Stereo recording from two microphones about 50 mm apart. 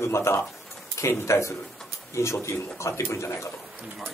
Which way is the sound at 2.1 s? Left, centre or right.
Left.